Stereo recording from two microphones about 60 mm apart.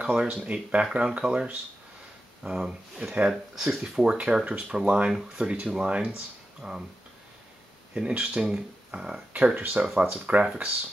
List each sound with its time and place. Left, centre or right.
0.0 s speech: centre
7.9 s speech: centre